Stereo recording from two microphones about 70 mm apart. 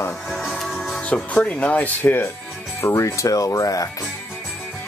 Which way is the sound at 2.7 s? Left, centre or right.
Left.